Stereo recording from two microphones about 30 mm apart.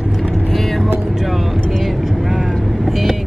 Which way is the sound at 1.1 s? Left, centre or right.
Centre.